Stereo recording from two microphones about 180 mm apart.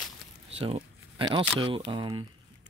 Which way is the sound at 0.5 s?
30° right (ahead or behind).